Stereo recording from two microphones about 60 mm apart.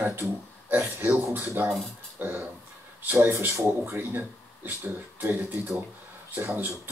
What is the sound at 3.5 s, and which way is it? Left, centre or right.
Speech, right.